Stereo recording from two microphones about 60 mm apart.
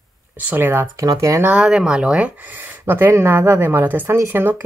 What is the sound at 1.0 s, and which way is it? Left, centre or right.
Speech, right.